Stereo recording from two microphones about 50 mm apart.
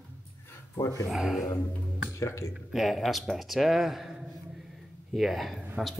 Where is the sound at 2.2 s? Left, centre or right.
Left.